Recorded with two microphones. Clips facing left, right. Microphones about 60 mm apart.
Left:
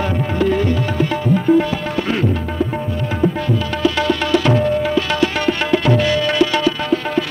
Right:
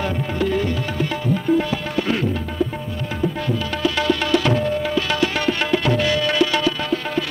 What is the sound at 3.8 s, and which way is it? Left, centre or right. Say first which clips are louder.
Music: left 2 dB; left.